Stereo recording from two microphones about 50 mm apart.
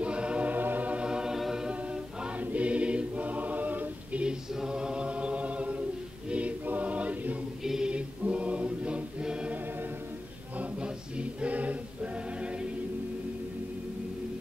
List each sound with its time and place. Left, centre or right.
0.0 s choir: right
0.6 s music: right
1.0 s music: centre
1.5 s a capella: centre
2.4 s choir: right
4.2 s choir: centre
7.6 s a capella: centre
7.9 s choir: right
10.6 s choir: right